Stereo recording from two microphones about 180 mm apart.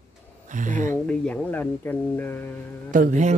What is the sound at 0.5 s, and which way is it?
Speech, 45° right (ahead or behind).